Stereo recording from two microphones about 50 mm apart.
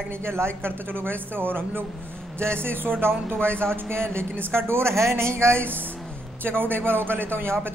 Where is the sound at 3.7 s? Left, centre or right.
Right.